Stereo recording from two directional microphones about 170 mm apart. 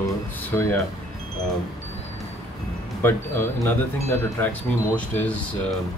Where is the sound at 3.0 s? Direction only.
15° left (ahead or behind).